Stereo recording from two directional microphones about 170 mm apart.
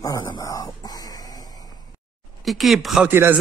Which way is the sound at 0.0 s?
25° left (ahead or behind).